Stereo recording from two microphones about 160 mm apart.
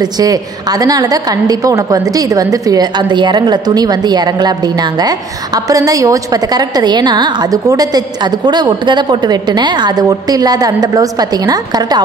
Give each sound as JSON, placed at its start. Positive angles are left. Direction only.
{"t": 0.0, "sound": "a woman's voice", "side_deg": -25}